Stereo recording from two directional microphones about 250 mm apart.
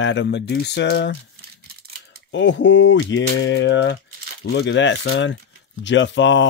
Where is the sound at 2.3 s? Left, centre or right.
Left.